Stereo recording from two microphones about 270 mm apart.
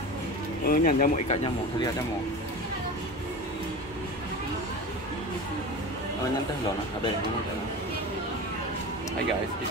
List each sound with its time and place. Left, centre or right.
0.7 s speech: left